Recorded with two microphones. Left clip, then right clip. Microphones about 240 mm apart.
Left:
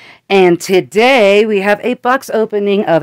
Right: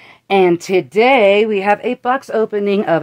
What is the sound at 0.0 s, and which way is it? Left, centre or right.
Speech, left.